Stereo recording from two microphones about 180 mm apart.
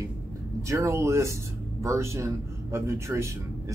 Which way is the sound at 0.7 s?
15° right (ahead or behind).